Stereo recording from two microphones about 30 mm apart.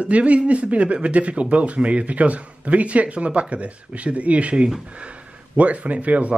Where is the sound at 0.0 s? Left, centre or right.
Right.